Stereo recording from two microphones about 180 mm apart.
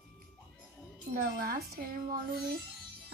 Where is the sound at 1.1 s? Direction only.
55° right (ahead or behind).